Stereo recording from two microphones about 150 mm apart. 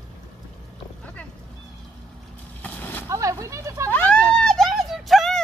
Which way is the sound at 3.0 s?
20° right (ahead or behind).